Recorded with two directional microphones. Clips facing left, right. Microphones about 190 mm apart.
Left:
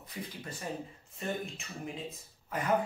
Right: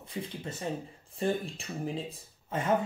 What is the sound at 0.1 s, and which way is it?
Speech, 25° right (ahead or behind).